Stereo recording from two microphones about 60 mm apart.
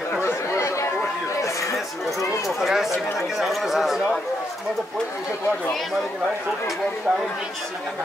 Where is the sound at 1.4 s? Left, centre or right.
Left.